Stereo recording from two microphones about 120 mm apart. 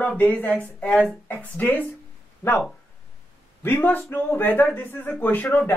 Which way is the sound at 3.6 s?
15° left (ahead or behind).